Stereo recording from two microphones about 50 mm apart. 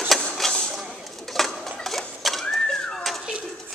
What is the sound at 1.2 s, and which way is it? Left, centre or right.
Bird, centre.